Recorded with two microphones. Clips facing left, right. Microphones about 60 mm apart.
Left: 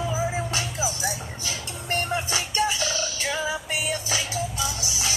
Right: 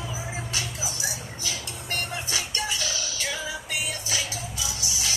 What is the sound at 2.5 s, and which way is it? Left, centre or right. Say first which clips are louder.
Music: left 8 dB; left.